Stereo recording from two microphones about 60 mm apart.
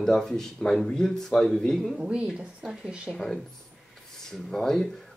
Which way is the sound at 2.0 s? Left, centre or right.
Centre.